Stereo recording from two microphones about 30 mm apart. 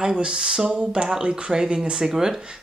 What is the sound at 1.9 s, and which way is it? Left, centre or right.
Speech, centre.